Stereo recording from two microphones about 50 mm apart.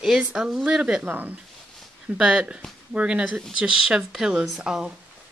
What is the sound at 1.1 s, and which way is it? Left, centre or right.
Speech, right.